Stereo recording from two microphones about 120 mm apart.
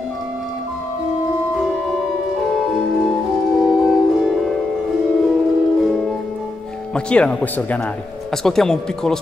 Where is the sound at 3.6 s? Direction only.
Centre (ahead or behind).